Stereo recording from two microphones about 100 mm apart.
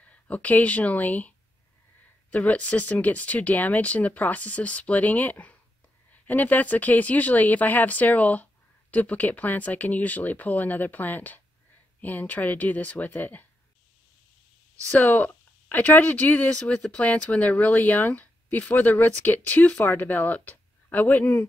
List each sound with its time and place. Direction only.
0.0 s speech: 15° left (ahead or behind)
2.3 s speech: 15° left (ahead or behind)
14.9 s speech: 15° left (ahead or behind)